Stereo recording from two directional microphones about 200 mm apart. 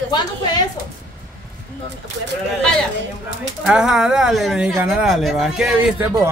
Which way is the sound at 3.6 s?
5° right (ahead or behind).